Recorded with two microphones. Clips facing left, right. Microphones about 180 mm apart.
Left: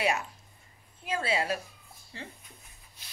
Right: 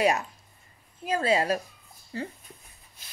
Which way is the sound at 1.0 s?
40° right (ahead or behind).